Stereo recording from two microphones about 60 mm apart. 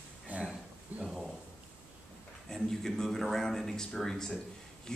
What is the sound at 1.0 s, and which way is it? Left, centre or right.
Speech, centre.